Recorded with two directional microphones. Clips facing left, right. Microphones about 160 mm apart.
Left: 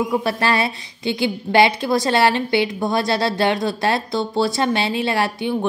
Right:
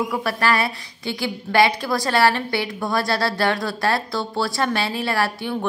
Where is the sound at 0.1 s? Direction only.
25° left (ahead or behind).